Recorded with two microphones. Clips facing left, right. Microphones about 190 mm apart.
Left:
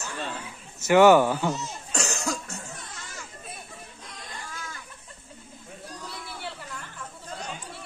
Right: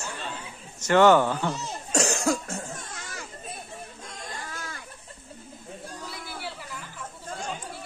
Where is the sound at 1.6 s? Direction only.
40° right (ahead or behind).